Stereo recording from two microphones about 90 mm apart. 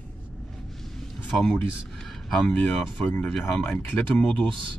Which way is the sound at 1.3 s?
5° left (ahead or behind).